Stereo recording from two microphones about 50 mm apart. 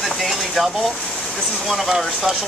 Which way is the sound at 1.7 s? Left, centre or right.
Centre.